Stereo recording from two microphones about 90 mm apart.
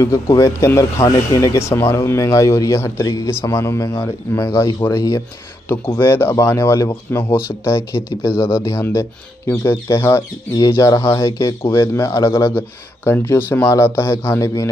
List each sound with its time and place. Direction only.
0.0 s speech: 35° left (ahead or behind)
5.9 s speech: 25° left (ahead or behind)